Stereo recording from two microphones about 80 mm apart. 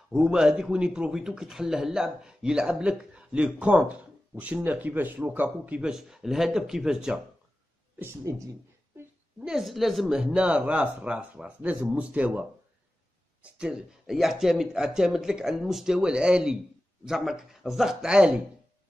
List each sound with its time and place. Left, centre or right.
0.1 s speech: centre
5.8 s speech: centre
8.0 s speech: right
9.4 s speech: centre